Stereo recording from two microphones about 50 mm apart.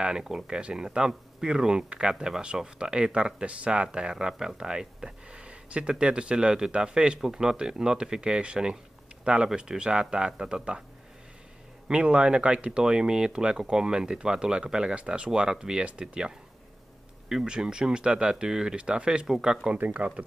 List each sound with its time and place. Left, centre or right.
0.0 s speech: centre
11.9 s speech: centre
19.8 s speech: right